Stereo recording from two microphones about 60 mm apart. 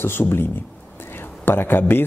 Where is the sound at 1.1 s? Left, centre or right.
Left.